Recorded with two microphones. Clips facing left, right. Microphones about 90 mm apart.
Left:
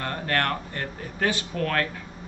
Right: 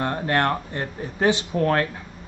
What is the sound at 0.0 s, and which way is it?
Speech, 20° right (ahead or behind).